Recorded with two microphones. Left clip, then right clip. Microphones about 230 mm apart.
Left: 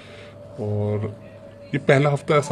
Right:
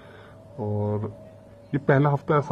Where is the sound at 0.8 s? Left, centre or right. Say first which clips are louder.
Left 3 dB; centre.